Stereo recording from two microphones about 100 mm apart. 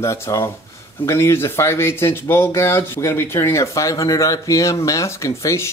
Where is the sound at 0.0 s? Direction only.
30° left (ahead or behind).